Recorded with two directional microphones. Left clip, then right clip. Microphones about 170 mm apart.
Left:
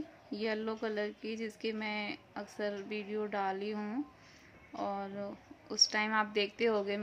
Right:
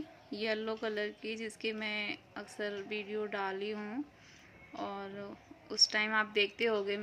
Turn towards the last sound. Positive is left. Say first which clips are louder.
# even
turn(degrees=15)  # may be behind; listen again after turning